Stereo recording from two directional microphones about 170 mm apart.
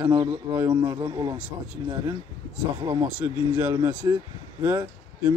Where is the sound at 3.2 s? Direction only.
15° right (ahead or behind).